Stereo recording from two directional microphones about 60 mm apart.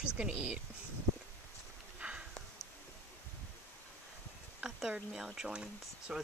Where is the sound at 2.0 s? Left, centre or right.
Centre.